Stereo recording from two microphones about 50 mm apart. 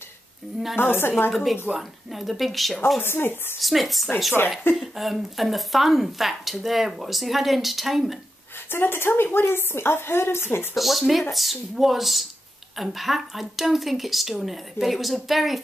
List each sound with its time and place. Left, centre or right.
0.7 s a woman's voice: left
1.3 s a woman's voice: centre
3.0 s a woman's voice: left
3.6 s a woman's voice: centre
8.6 s a woman's voice: left
10.8 s a woman's voice: centre